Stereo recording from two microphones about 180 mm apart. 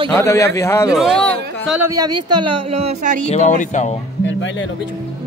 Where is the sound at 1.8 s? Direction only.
20° right (ahead or behind).